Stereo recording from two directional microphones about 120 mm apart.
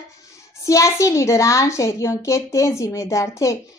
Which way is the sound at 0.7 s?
25° left (ahead or behind).